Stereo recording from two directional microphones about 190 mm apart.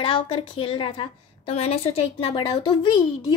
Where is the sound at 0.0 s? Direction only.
30° left (ahead or behind).